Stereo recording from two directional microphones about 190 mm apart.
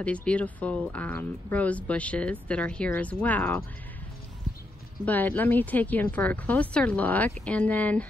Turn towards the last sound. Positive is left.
turn(degrees=10)  # may be behind; listen again after turning